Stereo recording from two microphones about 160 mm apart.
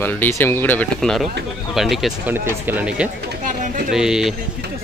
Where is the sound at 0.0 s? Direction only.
15° left (ahead or behind).